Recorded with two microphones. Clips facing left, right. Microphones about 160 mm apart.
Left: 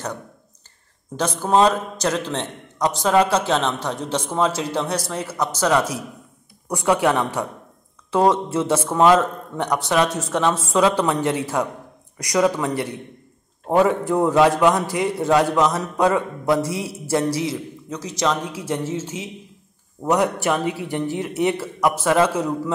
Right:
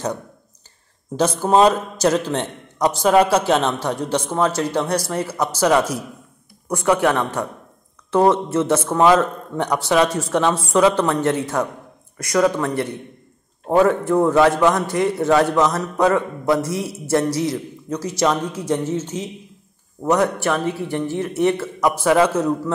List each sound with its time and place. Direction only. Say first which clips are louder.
1.1 s a man's voice: right 3 dB; 10° right (ahead or behind)
6.7 s a man's voice: right 1 dB; 10° left (ahead or behind)
8.9 s a man's voice: even; 5° right (ahead or behind)
11.2 s a man's voice: right 2 dB; 10° left (ahead or behind)